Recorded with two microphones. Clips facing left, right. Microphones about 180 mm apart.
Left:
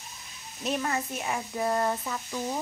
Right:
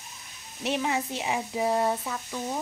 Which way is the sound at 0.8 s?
10° right (ahead or behind).